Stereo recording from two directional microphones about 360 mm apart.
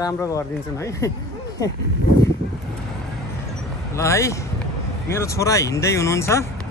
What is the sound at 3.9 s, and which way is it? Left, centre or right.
Speech, centre.